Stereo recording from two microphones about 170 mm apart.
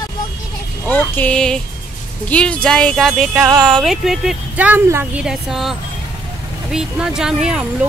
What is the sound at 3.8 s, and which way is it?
Speech, centre (ahead or behind).